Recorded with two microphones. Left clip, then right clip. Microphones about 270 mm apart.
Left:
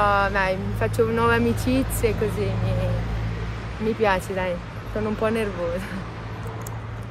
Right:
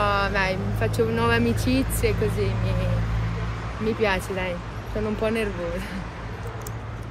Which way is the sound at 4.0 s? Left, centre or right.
Centre.